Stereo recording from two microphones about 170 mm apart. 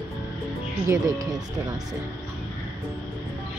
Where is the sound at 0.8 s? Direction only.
20° right (ahead or behind).